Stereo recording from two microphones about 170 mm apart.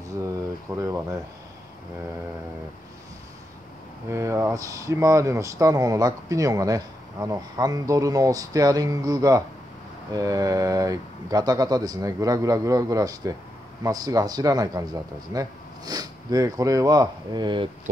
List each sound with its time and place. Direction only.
0.7 s speech: 15° right (ahead or behind)
4.1 s speech: 15° right (ahead or behind)